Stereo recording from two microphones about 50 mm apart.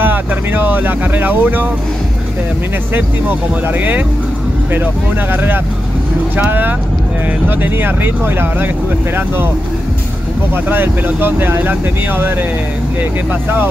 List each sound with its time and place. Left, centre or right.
0.0 s speech: right
3.6 s speech: right
5.3 s speech: right
7.4 s speech: right
10.5 s speech: right